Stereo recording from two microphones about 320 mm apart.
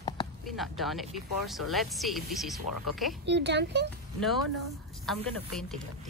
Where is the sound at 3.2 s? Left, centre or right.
Right.